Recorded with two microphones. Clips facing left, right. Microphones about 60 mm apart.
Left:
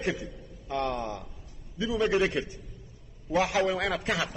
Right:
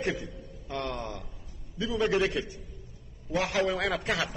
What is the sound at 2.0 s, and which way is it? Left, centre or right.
Speech, left.